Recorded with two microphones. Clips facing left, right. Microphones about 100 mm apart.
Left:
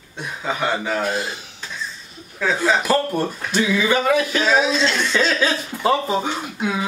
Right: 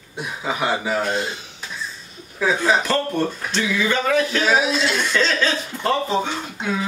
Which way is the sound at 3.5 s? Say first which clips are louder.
Left 3 dB; 10° left (ahead or behind).